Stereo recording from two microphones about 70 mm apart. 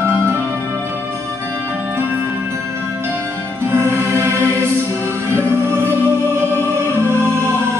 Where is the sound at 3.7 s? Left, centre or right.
Right.